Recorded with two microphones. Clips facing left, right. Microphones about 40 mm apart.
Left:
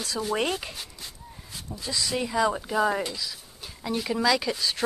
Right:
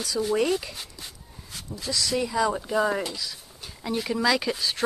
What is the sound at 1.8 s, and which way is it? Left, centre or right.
A woman's voice, centre.